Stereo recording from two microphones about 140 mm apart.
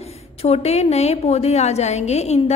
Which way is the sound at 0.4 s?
50° left (ahead or behind).